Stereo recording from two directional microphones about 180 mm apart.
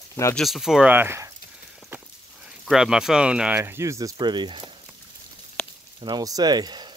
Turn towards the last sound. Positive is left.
turn(degrees=-25)  # may be behind; listen again after turning